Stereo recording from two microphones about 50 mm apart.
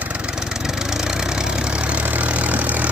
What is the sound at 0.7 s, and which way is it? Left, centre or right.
Vehicle, centre.